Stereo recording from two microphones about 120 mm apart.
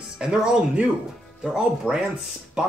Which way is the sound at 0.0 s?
5° right (ahead or behind).